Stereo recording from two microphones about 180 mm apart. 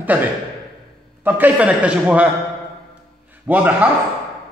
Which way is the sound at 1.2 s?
10° right (ahead or behind).